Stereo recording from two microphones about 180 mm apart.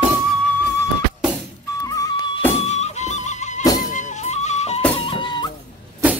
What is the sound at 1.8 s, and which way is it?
Music, 20° left (ahead or behind).